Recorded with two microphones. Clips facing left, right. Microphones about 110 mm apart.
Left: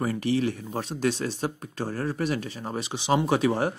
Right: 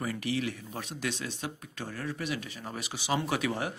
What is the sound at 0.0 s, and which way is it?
Speech, 35° left (ahead or behind).